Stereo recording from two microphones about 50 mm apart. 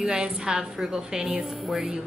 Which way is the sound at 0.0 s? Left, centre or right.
Centre.